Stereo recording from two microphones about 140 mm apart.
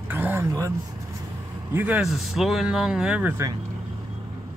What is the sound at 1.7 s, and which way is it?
Speech, 10° right (ahead or behind).